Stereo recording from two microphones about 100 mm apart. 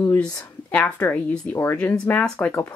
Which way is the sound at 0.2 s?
15° left (ahead or behind).